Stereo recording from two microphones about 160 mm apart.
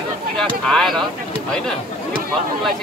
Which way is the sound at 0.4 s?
5° left (ahead or behind).